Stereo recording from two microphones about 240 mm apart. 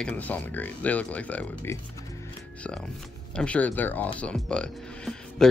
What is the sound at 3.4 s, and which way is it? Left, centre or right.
Speech, centre.